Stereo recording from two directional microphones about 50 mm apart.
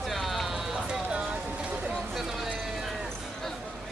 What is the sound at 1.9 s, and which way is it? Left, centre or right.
Vehicle, centre.